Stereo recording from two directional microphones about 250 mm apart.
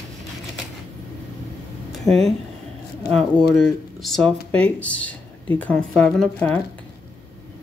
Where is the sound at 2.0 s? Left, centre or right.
Centre.